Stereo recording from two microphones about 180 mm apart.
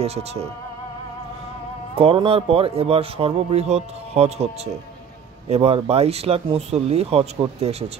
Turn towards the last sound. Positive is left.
turn(degrees=-35)  # may be behind; listen again after turning